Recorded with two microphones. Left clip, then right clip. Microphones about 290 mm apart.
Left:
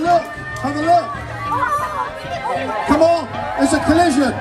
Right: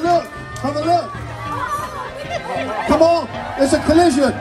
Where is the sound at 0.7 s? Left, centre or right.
Right.